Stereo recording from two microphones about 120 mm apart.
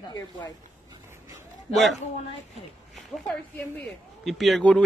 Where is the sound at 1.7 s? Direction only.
Centre (ahead or behind).